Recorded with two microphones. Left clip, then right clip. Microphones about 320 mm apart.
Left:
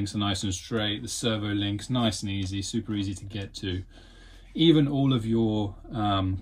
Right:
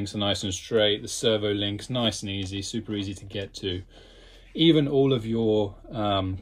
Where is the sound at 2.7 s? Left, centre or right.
Centre.